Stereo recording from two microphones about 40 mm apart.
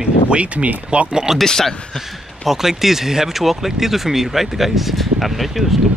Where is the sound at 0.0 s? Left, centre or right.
Right.